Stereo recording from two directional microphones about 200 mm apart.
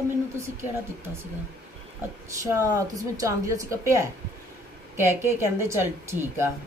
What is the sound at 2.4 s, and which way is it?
A woman's voice, 15° right (ahead or behind).